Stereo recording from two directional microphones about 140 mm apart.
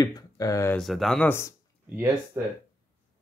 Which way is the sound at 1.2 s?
20° left (ahead or behind).